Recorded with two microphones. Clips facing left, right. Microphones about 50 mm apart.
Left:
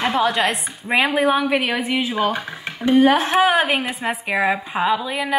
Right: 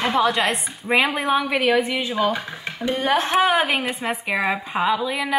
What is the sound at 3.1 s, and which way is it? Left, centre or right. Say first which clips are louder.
Speech: left 2 dB; centre.